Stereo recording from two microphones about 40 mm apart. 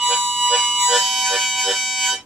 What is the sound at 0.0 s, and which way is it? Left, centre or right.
Music, centre.